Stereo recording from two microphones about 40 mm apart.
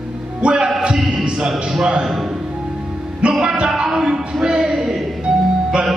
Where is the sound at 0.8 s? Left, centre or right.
Centre.